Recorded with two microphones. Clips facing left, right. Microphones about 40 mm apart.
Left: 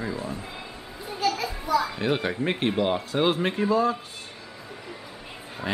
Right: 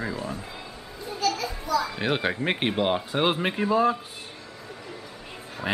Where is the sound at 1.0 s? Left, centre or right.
Centre.